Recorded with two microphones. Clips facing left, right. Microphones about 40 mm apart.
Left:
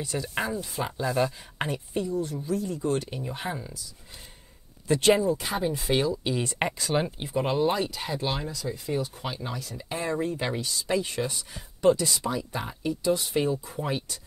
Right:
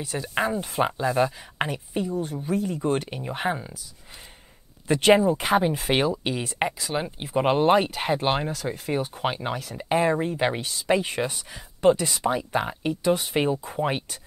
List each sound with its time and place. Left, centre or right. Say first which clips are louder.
0.0 s speech: right 1 dB; centre
0.3 s speech: right 7 dB; right
0.6 s speech: right 7 dB; right
0.9 s speech: right 3 dB; centre
4.8 s speech: right 3 dB; right
5.4 s speech: right 7 dB; right
6.3 s speech: right 1 dB; centre
7.3 s speech: right 6 dB; right
13.7 s speech: right 4 dB; right